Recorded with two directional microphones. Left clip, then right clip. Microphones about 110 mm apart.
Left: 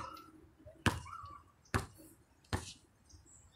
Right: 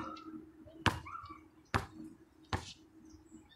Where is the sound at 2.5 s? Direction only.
45° left (ahead or behind).